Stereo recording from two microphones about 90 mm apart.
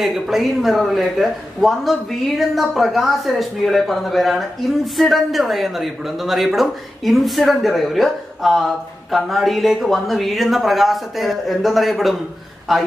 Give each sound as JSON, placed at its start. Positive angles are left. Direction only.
{"t": 0.0, "sound": "speech", "side_deg": -5}